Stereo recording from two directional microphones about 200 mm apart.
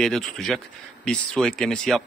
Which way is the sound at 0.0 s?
Centre (ahead or behind).